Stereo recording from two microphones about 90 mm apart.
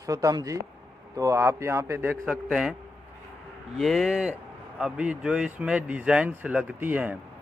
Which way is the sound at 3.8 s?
5° right (ahead or behind).